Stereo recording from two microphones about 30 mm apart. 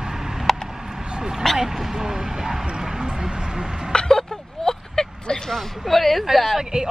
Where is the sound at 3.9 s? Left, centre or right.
Left.